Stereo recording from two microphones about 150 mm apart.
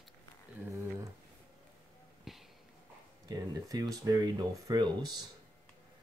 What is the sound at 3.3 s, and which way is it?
Speech, 25° right (ahead or behind).